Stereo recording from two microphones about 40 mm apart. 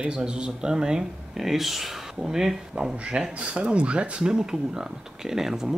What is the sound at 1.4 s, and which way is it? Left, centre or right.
Speech, centre.